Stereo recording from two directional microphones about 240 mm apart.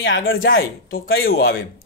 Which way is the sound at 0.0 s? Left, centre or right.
Left.